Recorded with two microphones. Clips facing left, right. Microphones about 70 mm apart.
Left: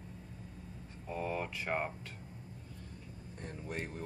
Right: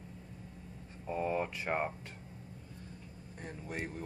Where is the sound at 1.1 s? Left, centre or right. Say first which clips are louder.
Right 4 dB; right.